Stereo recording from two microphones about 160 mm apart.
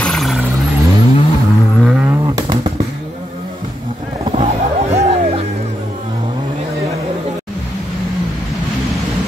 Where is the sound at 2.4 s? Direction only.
25° right (ahead or behind).